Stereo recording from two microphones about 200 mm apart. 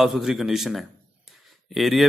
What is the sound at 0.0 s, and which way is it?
A man's voice, centre (ahead or behind).